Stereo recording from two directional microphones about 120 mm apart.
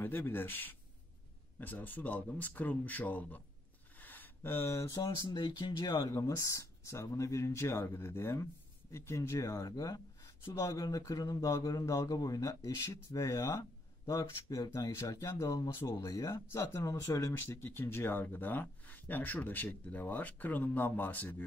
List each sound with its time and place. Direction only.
0.0 s speech: 15° left (ahead or behind)
4.0 s a sound: 15° left (ahead or behind)
5.3 s speech: 40° left (ahead or behind)
6.1 s speech: 25° left (ahead or behind)